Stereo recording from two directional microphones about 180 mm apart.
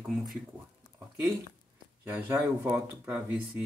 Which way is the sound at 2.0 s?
10° right (ahead or behind).